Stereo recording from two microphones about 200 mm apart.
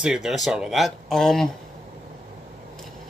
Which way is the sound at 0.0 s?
5° right (ahead or behind).